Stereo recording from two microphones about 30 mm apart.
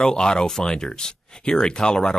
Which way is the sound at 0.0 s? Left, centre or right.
Left.